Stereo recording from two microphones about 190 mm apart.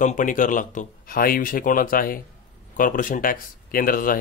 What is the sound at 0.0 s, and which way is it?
Speech, 45° left (ahead or behind).